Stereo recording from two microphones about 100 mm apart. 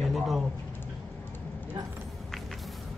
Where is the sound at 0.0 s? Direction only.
Centre (ahead or behind).